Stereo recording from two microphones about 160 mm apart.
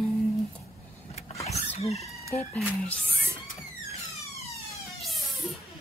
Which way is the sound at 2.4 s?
10° left (ahead or behind).